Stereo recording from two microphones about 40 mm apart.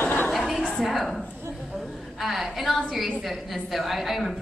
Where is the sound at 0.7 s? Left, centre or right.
Centre.